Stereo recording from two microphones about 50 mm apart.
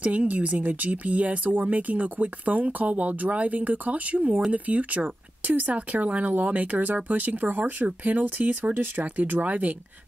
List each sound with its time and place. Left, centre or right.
0.0 s speech: right